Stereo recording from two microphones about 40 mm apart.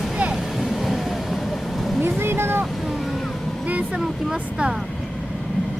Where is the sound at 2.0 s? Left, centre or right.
Right.